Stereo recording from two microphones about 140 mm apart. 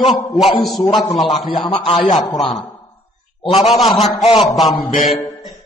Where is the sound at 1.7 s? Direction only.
40° left (ahead or behind).